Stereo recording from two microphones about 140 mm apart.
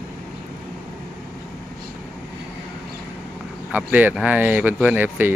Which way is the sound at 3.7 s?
10° right (ahead or behind).